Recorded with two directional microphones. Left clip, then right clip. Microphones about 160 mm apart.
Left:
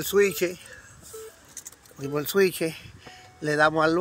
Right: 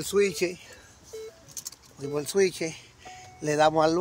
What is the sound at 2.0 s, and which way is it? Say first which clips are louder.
Speech: left 2 dB; 5° left (ahead or behind).